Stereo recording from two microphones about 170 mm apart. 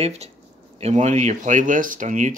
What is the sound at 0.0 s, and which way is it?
Speech, 40° right (ahead or behind).